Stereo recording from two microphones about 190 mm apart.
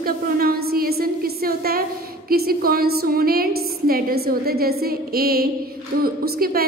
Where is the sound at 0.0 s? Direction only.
50° right (ahead or behind).